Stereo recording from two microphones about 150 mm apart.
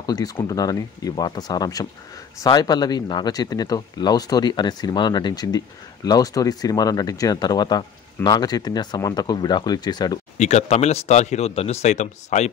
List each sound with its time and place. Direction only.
0.0 s speech: 25° left (ahead or behind)
10.3 s speech: 50° left (ahead or behind)